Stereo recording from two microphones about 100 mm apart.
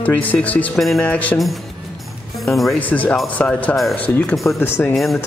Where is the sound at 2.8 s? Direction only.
15° left (ahead or behind).